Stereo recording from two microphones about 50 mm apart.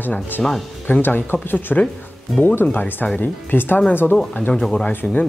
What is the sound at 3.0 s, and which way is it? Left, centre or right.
Speech, left.